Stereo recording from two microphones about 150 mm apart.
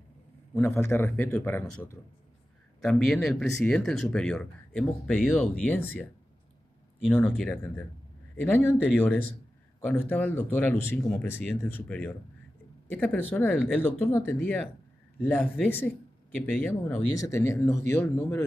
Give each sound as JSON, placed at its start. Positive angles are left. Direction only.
{"t": 0.6, "sound": "speech", "side_deg": 15}
{"t": 2.8, "sound": "speech", "side_deg": 0}
{"t": 7.1, "sound": "speech", "side_deg": 10}
{"t": 8.4, "sound": "speech", "side_deg": 15}
{"t": 13.6, "sound": "speech", "side_deg": -5}
{"t": 13.8, "sound": "a man's voice", "side_deg": 15}